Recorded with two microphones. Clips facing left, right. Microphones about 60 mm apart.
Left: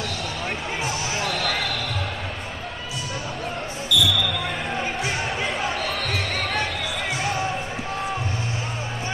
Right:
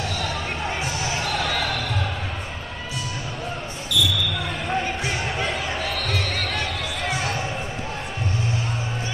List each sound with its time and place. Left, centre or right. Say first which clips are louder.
3.9 s basketball bounce: left 2 dB; right
6.0 s basketball bounce: even; centre